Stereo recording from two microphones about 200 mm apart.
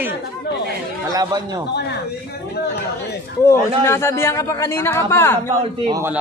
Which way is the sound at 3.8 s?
10° left (ahead or behind).